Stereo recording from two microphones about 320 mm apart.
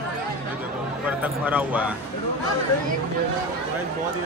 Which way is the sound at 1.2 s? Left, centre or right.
Centre.